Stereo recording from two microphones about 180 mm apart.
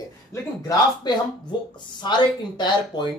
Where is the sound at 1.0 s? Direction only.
25° left (ahead or behind).